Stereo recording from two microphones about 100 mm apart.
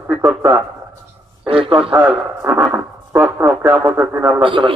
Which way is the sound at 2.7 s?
20° right (ahead or behind).